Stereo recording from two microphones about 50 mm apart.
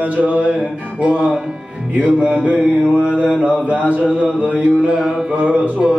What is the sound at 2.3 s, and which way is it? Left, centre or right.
Music, right.